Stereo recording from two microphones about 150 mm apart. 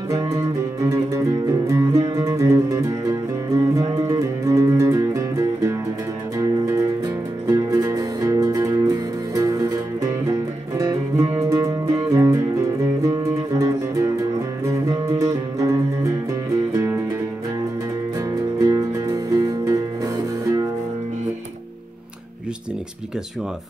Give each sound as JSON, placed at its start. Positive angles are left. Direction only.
{"t": 0.1, "sound": "music", "side_deg": -20}
{"t": 7.4, "sound": "music", "side_deg": -20}
{"t": 10.8, "sound": "music", "side_deg": -20}
{"t": 18.6, "sound": "music", "side_deg": -20}